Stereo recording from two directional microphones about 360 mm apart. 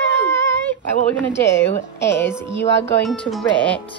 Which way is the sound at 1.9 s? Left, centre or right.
Left.